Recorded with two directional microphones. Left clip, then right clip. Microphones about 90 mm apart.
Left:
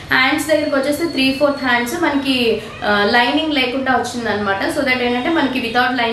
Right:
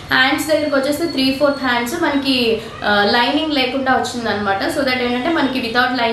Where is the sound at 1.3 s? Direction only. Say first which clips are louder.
Even; 15° right (ahead or behind).